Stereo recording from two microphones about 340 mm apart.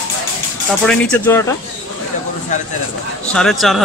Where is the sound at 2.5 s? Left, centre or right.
Left.